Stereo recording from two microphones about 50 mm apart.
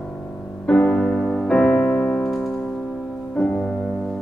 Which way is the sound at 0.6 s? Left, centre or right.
Centre.